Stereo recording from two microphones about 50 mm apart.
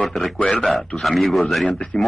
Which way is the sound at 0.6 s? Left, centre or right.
Centre.